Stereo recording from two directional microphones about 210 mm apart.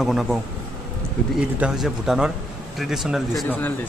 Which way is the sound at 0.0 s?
Centre (ahead or behind).